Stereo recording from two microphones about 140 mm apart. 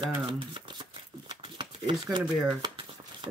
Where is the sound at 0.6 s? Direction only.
35° right (ahead or behind).